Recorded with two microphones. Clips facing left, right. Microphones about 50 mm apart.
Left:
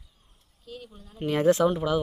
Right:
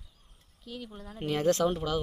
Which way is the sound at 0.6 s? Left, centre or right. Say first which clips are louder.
Right 1 dB; right.